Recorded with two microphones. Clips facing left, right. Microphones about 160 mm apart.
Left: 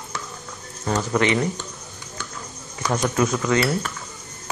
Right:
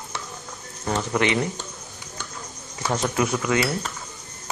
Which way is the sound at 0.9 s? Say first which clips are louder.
Left 2 dB; 20° right (ahead or behind).